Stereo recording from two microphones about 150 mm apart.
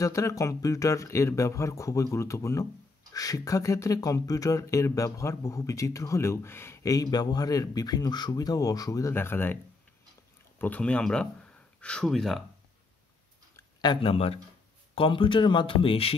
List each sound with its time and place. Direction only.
0.0 s speech: 20° left (ahead or behind)
10.6 s speech: 10° left (ahead or behind)
13.6 s speech: 30° left (ahead or behind)